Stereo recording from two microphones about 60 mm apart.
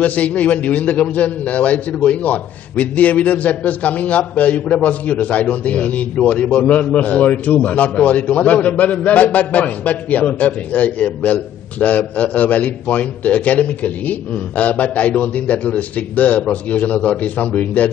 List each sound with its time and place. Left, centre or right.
0.0 s a man's voice: left